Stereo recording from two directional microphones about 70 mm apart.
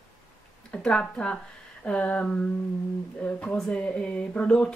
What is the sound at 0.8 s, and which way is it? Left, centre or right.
A woman's voice, centre.